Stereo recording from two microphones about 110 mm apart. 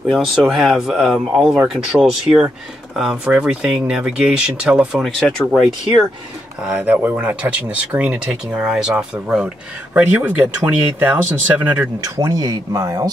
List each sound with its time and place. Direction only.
0.1 s speech: centre (ahead or behind)
5.0 s speech: 5° left (ahead or behind)
6.6 s speech: 15° right (ahead or behind)
12.0 s speech: 35° right (ahead or behind)